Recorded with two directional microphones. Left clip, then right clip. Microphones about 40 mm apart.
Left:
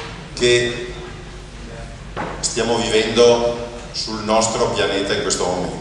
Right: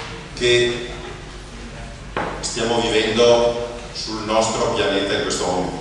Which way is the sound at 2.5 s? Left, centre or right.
Left.